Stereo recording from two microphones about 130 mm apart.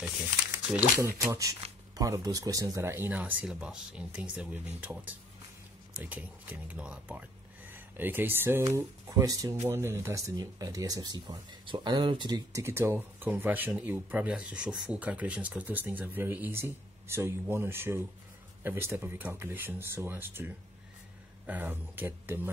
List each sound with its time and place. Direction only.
0.0 s speech: 5° right (ahead or behind)
0.9 s speech: 20° right (ahead or behind)
12.6 s speech: 20° right (ahead or behind)